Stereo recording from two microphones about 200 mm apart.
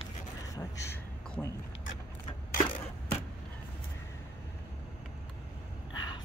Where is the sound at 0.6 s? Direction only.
15° left (ahead or behind).